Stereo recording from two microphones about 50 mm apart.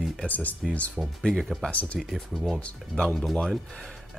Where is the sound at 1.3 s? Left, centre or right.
Centre.